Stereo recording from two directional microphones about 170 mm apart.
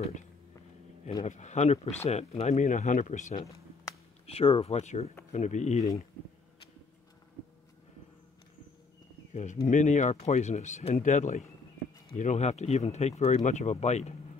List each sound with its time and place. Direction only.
1.2 s speech: 45° left (ahead or behind)
9.3 s speech: 40° left (ahead or behind)